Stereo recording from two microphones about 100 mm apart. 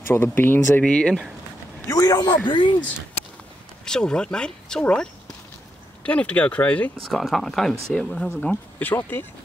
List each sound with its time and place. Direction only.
0.1 s speech: 20° left (ahead or behind)
1.9 s a man's voice: 35° left (ahead or behind)
2.4 s speech: 55° left (ahead or behind)
3.8 s speech: 5° left (ahead or behind)
6.0 s speech: 15° left (ahead or behind)
7.1 s speech: centre (ahead or behind); by 9.2 s 20° left (ahead or behind)